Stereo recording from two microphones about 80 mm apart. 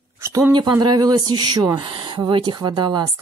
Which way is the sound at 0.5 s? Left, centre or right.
Right.